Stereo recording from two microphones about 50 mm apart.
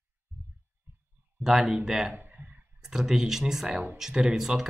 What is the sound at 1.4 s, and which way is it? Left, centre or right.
Speech, centre.